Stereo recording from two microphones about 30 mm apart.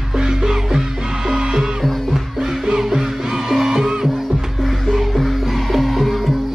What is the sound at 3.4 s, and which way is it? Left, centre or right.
Music, centre.